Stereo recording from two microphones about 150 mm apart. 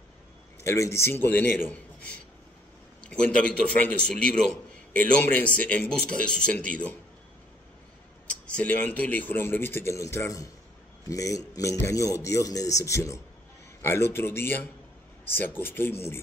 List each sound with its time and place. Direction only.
0.7 s speech: 20° left (ahead or behind)
8.3 s speech: 10° left (ahead or behind)